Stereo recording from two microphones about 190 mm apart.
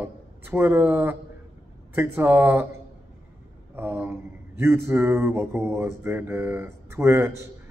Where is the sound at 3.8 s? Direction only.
10° right (ahead or behind).